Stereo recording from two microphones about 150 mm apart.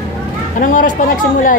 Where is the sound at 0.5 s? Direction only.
60° left (ahead or behind).